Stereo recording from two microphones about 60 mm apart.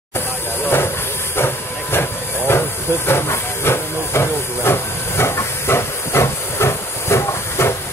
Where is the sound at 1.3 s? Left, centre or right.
Left.